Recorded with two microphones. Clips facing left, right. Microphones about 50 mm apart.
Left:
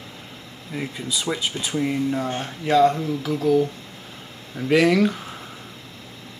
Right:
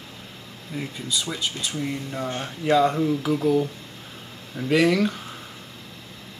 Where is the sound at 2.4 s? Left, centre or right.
Centre.